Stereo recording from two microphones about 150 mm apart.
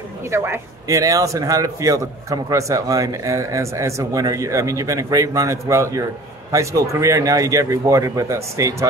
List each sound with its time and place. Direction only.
0.3 s a man's voice: 20° right (ahead or behind)